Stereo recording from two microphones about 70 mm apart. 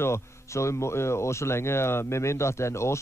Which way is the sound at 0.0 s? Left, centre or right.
Left.